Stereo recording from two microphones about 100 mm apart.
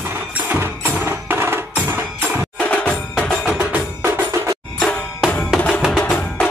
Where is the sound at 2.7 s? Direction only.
10° left (ahead or behind).